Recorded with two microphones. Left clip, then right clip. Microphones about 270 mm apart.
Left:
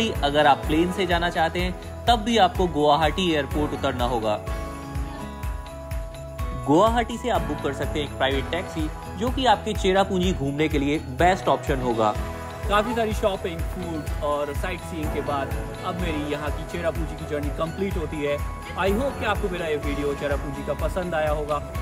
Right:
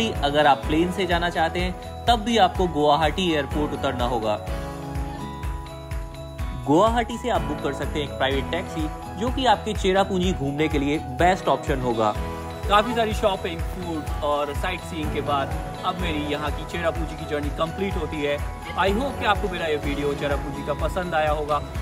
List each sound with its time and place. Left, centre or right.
0.0 s speech: centre
6.7 s speech: centre